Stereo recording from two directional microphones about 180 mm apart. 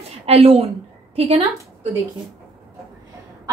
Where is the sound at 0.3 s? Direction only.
35° right (ahead or behind).